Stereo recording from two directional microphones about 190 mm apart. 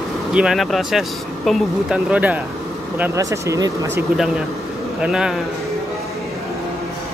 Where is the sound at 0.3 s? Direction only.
5° right (ahead or behind).